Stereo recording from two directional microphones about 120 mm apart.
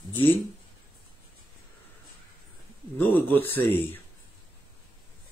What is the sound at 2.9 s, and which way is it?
Speech, 15° left (ahead or behind).